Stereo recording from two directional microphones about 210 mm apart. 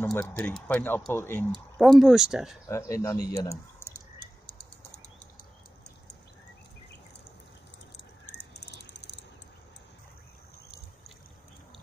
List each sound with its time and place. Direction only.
0.0 s speech: 10° left (ahead or behind)
1.8 s speech: centre (ahead or behind)
2.7 s speech: 15° left (ahead or behind)
8.3 s a sound: 55° left (ahead or behind)